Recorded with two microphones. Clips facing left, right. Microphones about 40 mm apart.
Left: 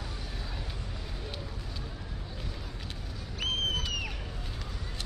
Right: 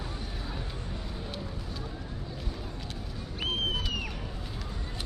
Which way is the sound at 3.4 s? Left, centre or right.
Centre.